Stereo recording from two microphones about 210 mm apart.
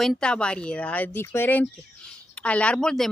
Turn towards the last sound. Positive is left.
turn(degrees=5)  # may be behind; listen again after turning